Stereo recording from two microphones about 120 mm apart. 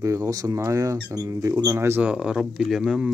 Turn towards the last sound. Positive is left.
turn(degrees=-5)  # may be behind; listen again after turning